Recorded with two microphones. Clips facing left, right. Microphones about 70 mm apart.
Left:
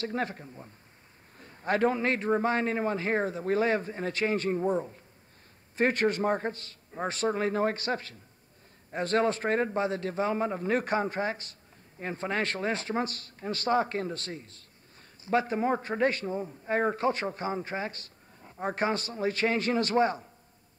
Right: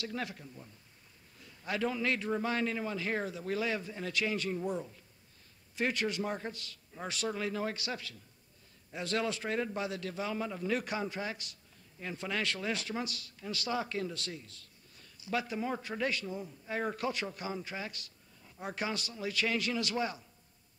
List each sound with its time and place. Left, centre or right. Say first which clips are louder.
0.0 s speech: left 7 dB; left